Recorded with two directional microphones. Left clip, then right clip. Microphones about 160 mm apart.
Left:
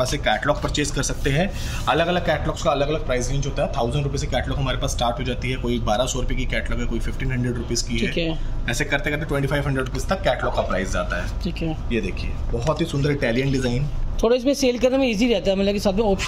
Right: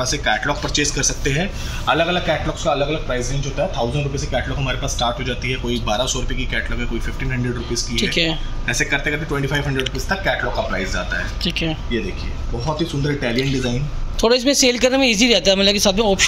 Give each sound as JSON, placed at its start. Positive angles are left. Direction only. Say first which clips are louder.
{"t": 0.0, "sound": "speech", "louder": "right 2 dB", "side_deg": 15}
{"t": 2.0, "sound": "a man's voice", "louder": "right 1 dB", "side_deg": 5}
{"t": 2.6, "sound": "a man's voice", "louder": "right 2 dB", "side_deg": -10}
{"t": 11.4, "sound": "a man's voice", "louder": "right 7 dB", "side_deg": 5}